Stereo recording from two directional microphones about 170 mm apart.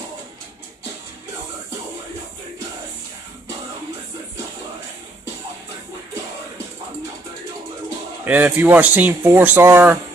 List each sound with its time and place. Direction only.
8.3 s speech: 10° right (ahead or behind)